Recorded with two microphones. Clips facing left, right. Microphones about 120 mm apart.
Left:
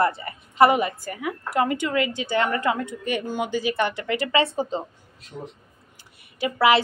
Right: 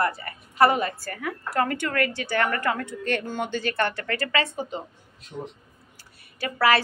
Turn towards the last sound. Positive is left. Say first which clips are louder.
# left 3 dB
turn(degrees=15)  # may be behind; listen again after turning